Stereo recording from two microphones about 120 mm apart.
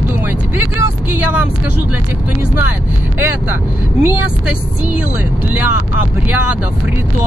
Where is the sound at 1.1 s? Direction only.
10° right (ahead or behind).